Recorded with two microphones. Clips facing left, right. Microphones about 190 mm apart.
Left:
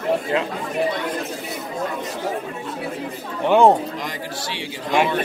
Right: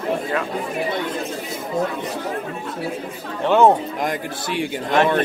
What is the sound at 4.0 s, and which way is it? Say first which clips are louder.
Speech: right 5 dB; 50° right (ahead or behind).